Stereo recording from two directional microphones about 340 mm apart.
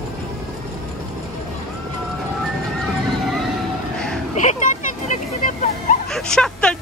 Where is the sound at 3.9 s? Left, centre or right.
Centre.